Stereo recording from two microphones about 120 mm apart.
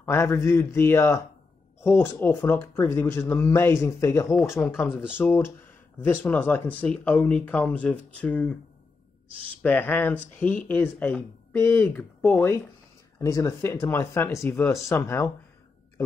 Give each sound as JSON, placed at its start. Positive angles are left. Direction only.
{"t": 0.0, "sound": "speech", "side_deg": 25}
{"t": 4.8, "sound": "speech", "side_deg": -5}
{"t": 5.1, "sound": "speech", "side_deg": 20}
{"t": 9.6, "sound": "speech", "side_deg": 15}